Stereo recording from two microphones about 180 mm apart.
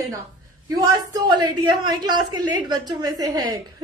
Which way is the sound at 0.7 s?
20° right (ahead or behind).